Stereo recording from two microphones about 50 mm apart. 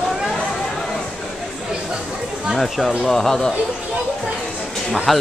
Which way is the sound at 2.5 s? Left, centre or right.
Centre.